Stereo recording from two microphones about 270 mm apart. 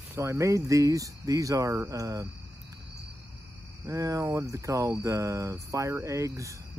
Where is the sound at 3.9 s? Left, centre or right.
Centre.